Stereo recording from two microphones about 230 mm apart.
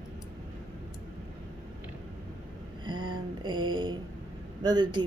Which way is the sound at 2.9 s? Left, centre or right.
Centre.